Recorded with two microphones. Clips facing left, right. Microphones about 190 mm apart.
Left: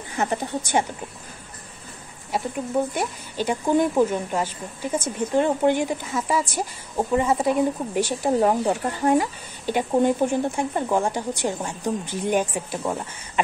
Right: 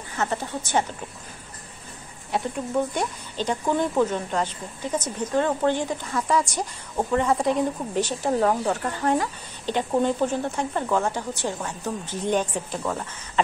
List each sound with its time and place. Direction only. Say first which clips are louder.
0.2 s speech: left 2 dB; 15° left (ahead or behind)
2.3 s speech: left 1 dB; 5° left (ahead or behind)